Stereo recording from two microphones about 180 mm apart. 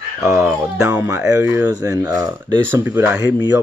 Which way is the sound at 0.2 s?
15° right (ahead or behind).